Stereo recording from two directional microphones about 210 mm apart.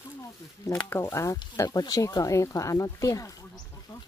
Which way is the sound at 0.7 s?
10° left (ahead or behind).